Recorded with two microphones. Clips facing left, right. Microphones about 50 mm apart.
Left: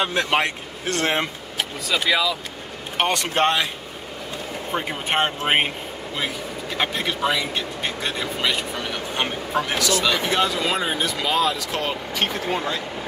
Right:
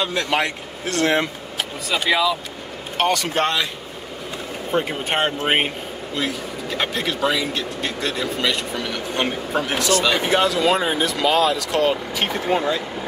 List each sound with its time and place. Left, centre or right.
0.0 s speech: left
0.8 s speech: left
2.0 s speech: centre
3.0 s speech: left
4.7 s speech: centre
6.8 s speech: centre